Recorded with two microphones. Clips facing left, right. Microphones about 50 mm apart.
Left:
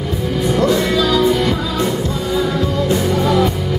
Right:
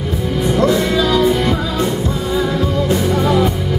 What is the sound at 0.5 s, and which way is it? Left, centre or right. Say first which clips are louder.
Music: right 1 dB; centre.